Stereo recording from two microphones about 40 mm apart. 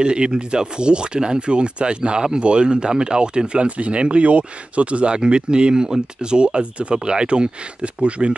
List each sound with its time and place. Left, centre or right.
0.0 s speech: right